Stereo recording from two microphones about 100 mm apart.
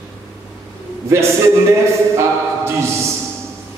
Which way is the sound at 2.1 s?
25° right (ahead or behind).